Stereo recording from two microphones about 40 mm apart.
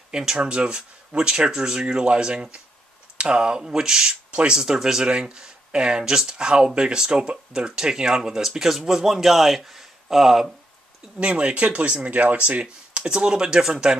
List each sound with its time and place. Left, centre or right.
0.1 s speech: centre
4.3 s speech: right
4.7 s speech: centre
11.1 s speech: right